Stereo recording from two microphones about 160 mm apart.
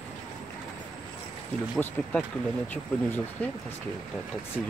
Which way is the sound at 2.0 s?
10° left (ahead or behind).